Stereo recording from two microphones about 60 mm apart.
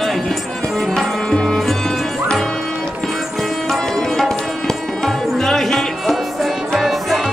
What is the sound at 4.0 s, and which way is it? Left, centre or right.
Music, centre.